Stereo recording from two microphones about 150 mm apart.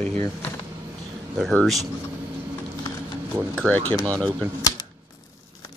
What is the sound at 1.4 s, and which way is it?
Speech, centre (ahead or behind).